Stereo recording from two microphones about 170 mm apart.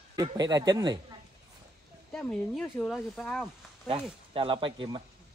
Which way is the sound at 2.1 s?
5° left (ahead or behind).